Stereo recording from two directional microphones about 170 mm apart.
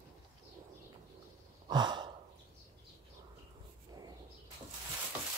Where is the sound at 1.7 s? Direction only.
25° right (ahead or behind).